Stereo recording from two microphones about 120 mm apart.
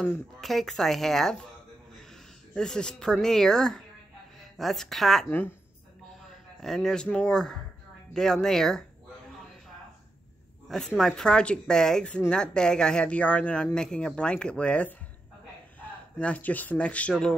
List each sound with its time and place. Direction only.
0.4 s speech: centre (ahead or behind)
2.5 s speech: 5° left (ahead or behind)
5.3 s speech: 15° left (ahead or behind)
6.6 s speech: 5° left (ahead or behind)
11.0 s speech: 5° left (ahead or behind)